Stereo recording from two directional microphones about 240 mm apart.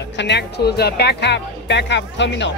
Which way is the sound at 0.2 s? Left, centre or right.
Left.